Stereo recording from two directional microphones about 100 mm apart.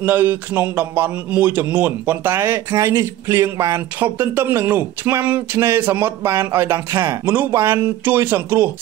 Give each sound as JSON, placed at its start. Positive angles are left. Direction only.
{"t": 0.0, "sound": "speech", "side_deg": -20}
{"t": 2.7, "sound": "speech", "side_deg": -35}